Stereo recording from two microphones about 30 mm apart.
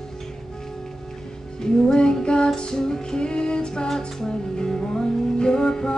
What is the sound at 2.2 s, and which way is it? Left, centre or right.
Music, left.